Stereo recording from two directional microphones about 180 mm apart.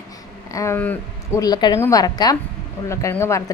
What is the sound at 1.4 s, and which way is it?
A woman's voice, 20° left (ahead or behind).